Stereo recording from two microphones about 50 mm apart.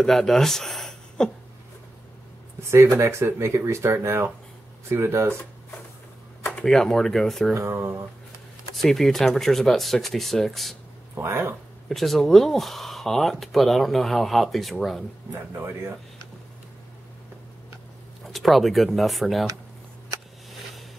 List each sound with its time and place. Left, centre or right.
0.0 s speech: centre
2.7 s speech: right
6.7 s speech: centre
7.5 s speech: right
8.7 s speech: centre
11.1 s speech: right
11.9 s speech: centre
18.2 s speech: centre